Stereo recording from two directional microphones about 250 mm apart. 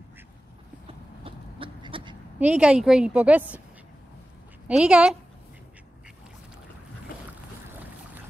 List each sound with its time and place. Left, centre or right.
0.8 s a sound: right
2.3 s a woman's voice: centre
4.6 s a woman's voice: centre